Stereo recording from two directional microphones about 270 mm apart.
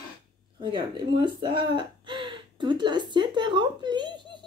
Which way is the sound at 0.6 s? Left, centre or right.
Centre.